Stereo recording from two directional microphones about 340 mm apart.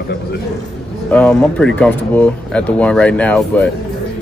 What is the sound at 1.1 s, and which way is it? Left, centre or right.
Speech, centre.